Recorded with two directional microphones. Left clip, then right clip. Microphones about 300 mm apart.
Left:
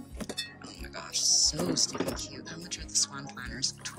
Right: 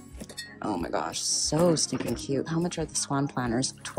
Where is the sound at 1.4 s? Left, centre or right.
Centre.